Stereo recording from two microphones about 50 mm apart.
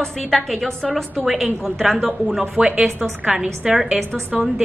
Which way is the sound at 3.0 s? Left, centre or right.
Centre.